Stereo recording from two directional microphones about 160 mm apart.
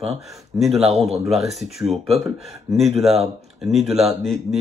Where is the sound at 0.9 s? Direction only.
40° right (ahead or behind).